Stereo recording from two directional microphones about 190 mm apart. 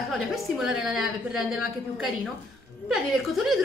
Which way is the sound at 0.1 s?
Centre (ahead or behind).